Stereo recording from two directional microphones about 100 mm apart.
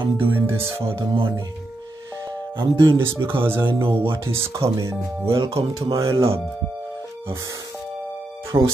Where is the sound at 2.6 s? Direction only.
50° right (ahead or behind).